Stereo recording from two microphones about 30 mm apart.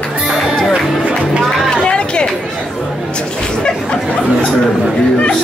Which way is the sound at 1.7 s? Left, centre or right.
Left.